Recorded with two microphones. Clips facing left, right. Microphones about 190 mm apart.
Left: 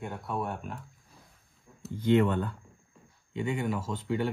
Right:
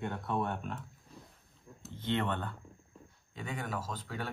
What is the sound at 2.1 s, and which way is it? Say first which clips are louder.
Speech: left 9 dB; 40° left (ahead or behind).